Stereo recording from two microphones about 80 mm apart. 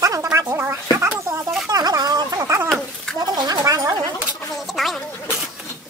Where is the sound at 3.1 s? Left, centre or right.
Right.